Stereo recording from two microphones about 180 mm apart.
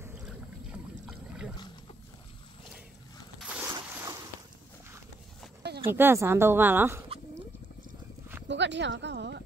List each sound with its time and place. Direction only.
0.0 s boat: 5° right (ahead or behind)
3.3 s zipper: 5° right (ahead or behind)
5.9 s speech: 10° right (ahead or behind)
8.5 s speech: 80° right